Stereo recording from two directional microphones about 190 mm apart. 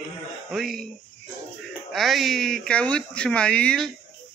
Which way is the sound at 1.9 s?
Centre (ahead or behind).